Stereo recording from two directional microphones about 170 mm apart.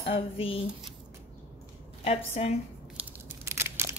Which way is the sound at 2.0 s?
35° left (ahead or behind).